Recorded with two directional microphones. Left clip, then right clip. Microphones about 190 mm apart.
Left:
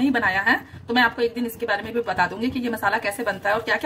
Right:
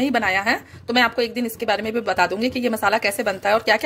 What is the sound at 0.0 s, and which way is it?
A woman's voice, 30° right (ahead or behind).